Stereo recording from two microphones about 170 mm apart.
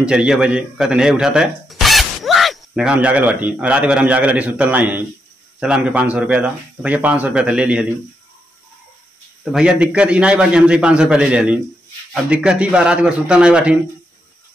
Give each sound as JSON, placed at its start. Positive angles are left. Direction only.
{"t": 0.0, "sound": "a man's voice", "side_deg": -5}
{"t": 9.4, "sound": "a man's voice", "side_deg": -5}